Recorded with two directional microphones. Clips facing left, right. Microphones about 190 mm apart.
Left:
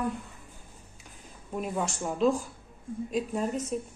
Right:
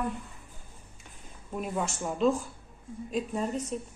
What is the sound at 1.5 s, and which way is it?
A woman's voice, centre (ahead or behind).